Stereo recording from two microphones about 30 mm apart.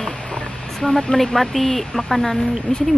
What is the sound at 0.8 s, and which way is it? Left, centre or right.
Speech, centre.